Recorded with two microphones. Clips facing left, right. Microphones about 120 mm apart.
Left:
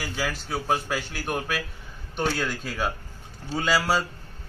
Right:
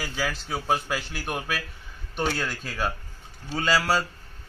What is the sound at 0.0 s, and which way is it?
A man's voice, centre (ahead or behind).